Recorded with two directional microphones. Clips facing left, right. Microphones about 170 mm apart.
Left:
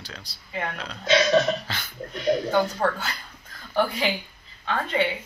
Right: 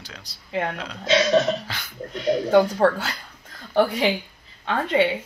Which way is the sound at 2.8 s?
90° right.